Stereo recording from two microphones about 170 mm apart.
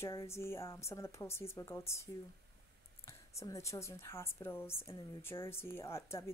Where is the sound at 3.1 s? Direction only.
15° left (ahead or behind).